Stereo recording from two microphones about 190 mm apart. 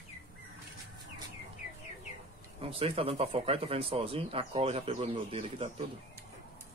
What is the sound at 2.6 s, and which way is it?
Speech, 30° right (ahead or behind).